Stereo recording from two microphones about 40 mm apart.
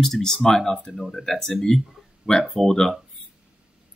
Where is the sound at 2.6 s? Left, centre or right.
Centre.